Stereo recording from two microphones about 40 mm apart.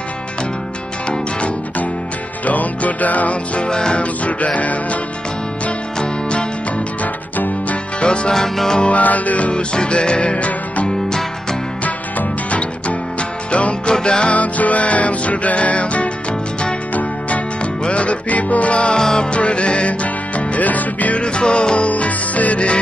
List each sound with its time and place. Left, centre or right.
2.4 s music: left
3.6 s music: left
4.0 s music: left
8.0 s music: left
8.4 s music: centre
8.8 s music: left
9.5 s music: left
11.8 s music: left
13.8 s music: centre
14.3 s music: left
17.8 s music: left
18.9 s music: centre
19.3 s music: left
21.2 s music: left